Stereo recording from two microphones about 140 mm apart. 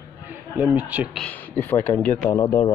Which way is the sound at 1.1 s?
10° left (ahead or behind).